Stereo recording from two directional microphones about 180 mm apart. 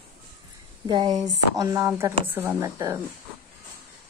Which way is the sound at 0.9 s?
25° right (ahead or behind).